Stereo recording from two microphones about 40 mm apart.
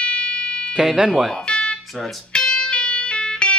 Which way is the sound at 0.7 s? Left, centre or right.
Centre.